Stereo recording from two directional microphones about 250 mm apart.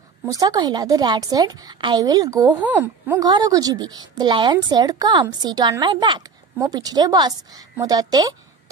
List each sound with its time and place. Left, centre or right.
0.3 s a woman's voice: centre